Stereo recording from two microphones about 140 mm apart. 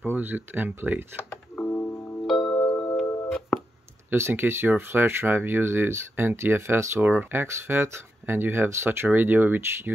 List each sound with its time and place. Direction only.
0.0 s speech: 15° right (ahead or behind)
1.5 s music: 15° left (ahead or behind)
2.2 s music: centre (ahead or behind)
4.1 s speech: 15° right (ahead or behind)